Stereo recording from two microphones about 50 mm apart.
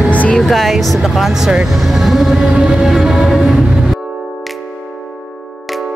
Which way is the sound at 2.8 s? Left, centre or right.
Centre.